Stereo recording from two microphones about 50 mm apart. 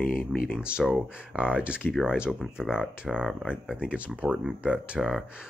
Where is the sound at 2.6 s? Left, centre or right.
Centre.